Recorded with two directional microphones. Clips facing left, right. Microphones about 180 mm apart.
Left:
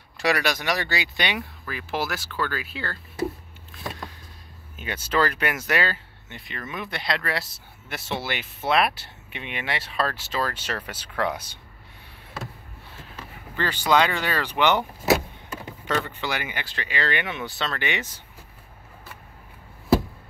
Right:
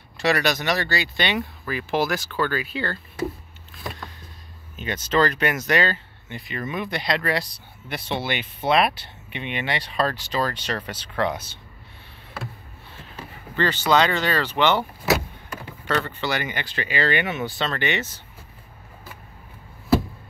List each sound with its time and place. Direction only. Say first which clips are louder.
0.2 s speech: right 2 dB; 10° left (ahead or behind)
1.7 s speech: right 5 dB; centre (ahead or behind)
4.7 s speech: right 3 dB; 10° left (ahead or behind)
13.6 s speech: right 2 dB; 10° left (ahead or behind)
15.9 s speech: right 2 dB; 15° left (ahead or behind)